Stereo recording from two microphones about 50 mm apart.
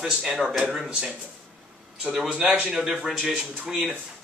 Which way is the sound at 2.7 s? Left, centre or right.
Centre.